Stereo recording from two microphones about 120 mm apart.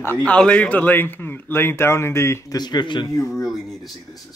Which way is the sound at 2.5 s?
35° left (ahead or behind).